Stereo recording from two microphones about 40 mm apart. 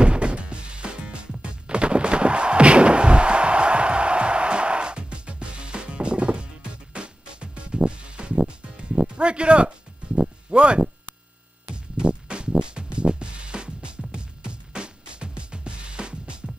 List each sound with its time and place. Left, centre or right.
0.0 s music: right